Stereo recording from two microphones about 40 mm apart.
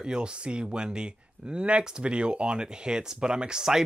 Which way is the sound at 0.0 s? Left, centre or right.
Right.